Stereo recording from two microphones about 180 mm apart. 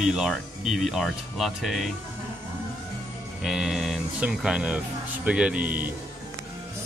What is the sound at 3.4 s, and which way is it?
Speech, 5° right (ahead or behind).